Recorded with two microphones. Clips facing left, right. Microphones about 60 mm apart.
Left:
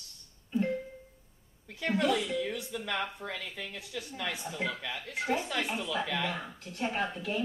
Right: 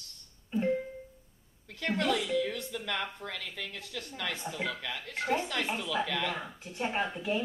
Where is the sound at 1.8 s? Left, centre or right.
Centre.